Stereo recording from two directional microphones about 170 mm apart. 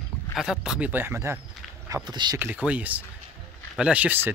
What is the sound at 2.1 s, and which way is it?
Speech, 25° right (ahead or behind).